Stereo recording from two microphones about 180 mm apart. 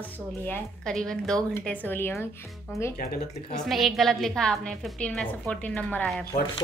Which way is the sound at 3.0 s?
55° left (ahead or behind).